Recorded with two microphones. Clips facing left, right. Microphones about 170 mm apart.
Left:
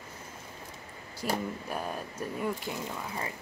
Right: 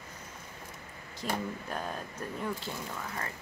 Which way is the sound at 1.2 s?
10° left (ahead or behind).